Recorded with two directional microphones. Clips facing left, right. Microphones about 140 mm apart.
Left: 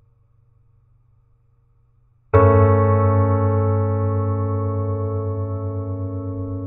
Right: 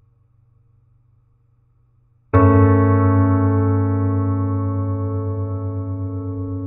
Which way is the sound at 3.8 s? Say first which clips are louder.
Right 2 dB; 20° left (ahead or behind).